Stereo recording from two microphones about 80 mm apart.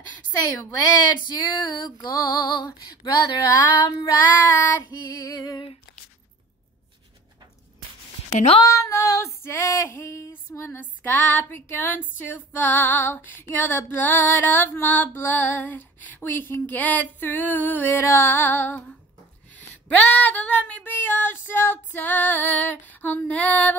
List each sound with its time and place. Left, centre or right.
1.2 s female singing: left
4.0 s child singing: left
5.4 s female singing: left
8.6 s female singing: left
10.7 s female singing: left
17.9 s female singing: left